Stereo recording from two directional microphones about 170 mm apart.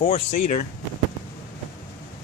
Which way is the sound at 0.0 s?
40° left (ahead or behind).